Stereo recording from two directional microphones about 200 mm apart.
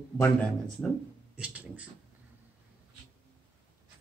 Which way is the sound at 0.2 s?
5° left (ahead or behind).